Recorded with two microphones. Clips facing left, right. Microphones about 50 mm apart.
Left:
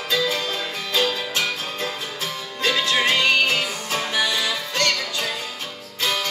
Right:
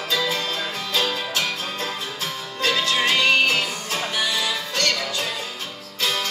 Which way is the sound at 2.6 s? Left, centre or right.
Left.